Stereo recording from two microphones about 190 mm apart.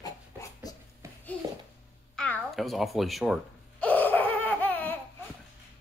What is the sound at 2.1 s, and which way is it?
Babbling, 5° left (ahead or behind).